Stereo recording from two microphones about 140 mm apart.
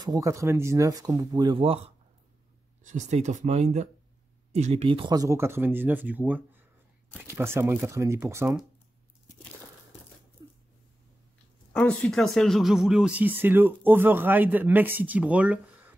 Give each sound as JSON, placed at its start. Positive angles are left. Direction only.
{"t": 0.0, "sound": "speech", "side_deg": -25}
{"t": 2.8, "sound": "speech", "side_deg": -60}
{"t": 4.8, "sound": "speech", "side_deg": -40}
{"t": 5.1, "sound": "speech", "side_deg": -25}
{"t": 10.4, "sound": "a sound", "side_deg": -30}
{"t": 11.7, "sound": "speech", "side_deg": 5}